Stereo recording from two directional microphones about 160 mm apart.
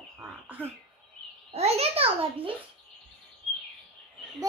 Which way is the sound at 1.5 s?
40° right (ahead or behind).